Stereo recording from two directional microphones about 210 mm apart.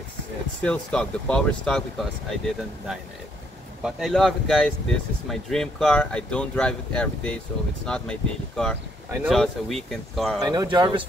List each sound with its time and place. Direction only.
0.6 s speech: 5° left (ahead or behind)
10.4 s speech: 20° right (ahead or behind)